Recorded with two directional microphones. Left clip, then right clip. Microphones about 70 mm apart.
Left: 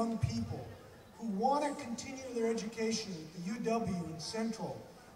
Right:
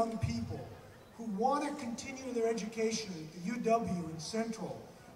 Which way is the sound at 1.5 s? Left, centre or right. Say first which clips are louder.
Left 1 dB; right.